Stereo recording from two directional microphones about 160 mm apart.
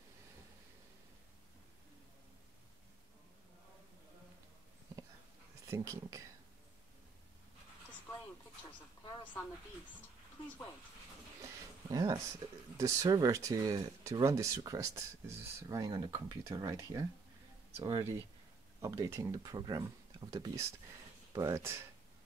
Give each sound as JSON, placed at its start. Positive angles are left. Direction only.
{"t": 5.7, "sound": "speech", "side_deg": -20}
{"t": 11.4, "sound": "speech", "side_deg": -20}